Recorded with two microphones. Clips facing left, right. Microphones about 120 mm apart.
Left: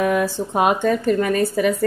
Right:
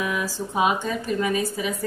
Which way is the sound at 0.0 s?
60° left (ahead or behind).